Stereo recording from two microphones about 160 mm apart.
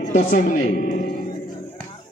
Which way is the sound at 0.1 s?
50° left (ahead or behind).